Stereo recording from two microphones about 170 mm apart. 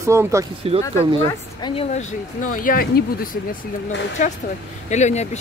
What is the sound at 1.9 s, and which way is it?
Speech, 50° left (ahead or behind).